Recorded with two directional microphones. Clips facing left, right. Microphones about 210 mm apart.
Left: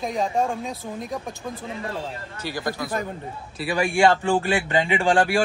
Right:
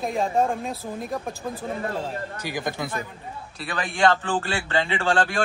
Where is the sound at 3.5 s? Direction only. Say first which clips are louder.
Left 6 dB; 10° left (ahead or behind).